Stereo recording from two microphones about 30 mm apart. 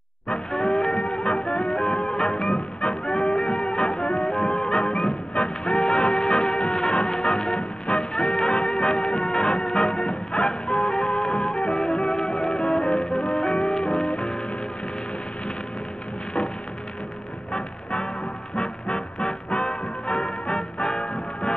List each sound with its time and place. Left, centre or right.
0.5 s music: left
17.5 s music: left